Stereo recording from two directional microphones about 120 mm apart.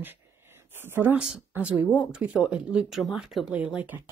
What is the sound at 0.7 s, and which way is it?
Speech, 20° right (ahead or behind).